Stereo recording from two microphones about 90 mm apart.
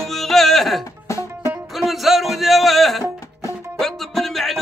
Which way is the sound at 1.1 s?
35° left (ahead or behind).